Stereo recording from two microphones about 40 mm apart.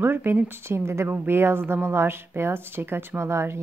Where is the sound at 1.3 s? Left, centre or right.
Right.